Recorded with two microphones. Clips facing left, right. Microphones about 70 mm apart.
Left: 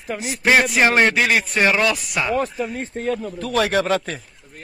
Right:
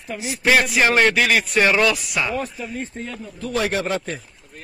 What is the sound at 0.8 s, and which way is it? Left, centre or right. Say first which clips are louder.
Speech: left 1 dB; left.